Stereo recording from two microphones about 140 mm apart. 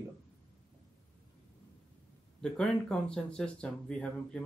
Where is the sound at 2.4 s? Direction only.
5° left (ahead or behind).